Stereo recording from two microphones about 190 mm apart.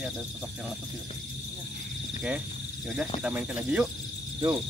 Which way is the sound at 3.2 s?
5° right (ahead or behind).